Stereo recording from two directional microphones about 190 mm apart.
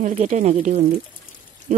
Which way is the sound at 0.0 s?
40° right (ahead or behind).